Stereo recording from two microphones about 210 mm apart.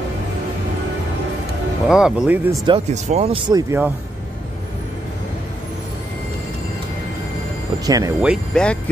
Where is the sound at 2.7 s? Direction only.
30° right (ahead or behind).